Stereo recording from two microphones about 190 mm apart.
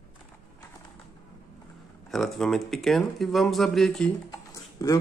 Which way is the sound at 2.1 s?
Centre (ahead or behind).